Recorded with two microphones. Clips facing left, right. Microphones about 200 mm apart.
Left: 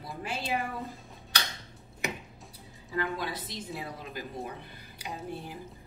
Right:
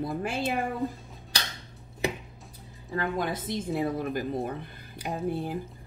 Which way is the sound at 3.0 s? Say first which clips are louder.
Right 3 dB; 50° right (ahead or behind).